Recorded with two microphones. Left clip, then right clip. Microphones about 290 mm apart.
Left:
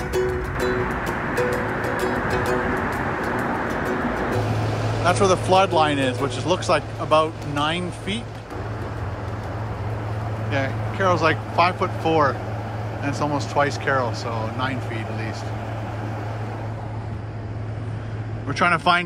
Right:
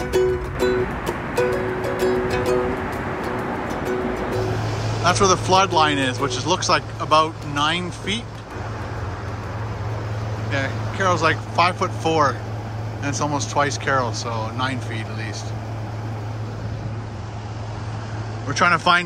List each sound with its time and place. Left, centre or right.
0.0 s music: centre
4.6 s vehicle: left
5.0 s speech: centre
10.5 s speech: centre
18.5 s speech: centre